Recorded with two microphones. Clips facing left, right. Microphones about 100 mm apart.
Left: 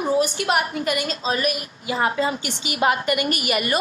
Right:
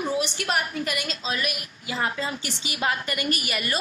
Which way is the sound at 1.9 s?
15° left (ahead or behind).